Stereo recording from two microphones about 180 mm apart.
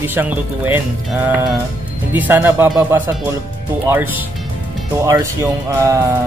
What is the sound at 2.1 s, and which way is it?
Speech, 10° right (ahead or behind).